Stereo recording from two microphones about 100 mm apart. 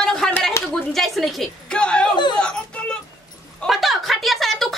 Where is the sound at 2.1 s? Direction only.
50° left (ahead or behind).